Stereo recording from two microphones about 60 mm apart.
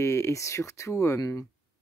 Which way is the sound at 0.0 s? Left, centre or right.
Left.